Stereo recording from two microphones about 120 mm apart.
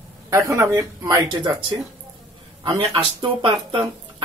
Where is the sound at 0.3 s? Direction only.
25° right (ahead or behind).